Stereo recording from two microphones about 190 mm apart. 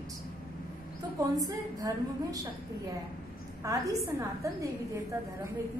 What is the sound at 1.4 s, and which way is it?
A woman's voice, 20° right (ahead or behind).